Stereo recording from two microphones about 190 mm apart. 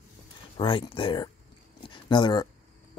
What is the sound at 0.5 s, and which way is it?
Speech, 25° left (ahead or behind).